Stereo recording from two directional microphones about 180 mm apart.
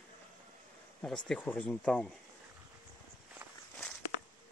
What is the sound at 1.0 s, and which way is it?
Speech, 5° left (ahead or behind).